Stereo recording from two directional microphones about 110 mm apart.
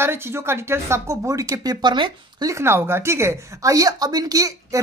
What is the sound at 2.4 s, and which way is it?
Speech, 25° right (ahead or behind).